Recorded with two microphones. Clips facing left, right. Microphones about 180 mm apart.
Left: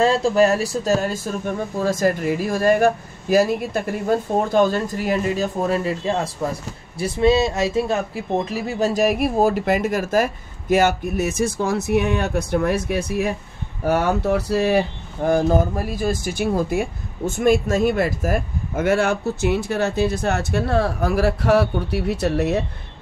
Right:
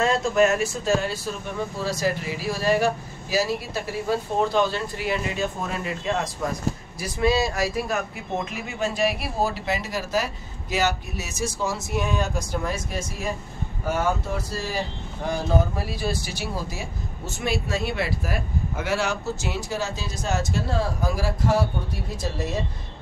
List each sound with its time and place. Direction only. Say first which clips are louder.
0.0 s speech: left 4 dB; 30° left (ahead or behind)
8.5 s speech: left 7 dB; 35° left (ahead or behind); by 22.7 s 65° left (ahead or behind)